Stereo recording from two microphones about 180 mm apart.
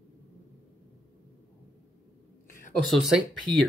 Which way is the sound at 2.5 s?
45° left (ahead or behind).